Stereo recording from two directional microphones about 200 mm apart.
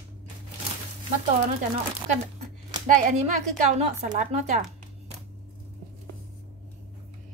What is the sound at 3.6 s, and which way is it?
Speech, 40° right (ahead or behind).